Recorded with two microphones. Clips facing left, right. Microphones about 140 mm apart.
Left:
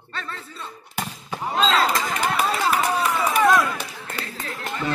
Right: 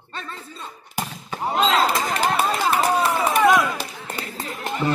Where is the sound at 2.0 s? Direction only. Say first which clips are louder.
Right 2 dB; 35° right (ahead or behind).